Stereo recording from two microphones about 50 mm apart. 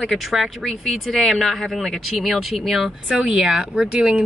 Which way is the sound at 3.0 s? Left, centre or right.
Centre.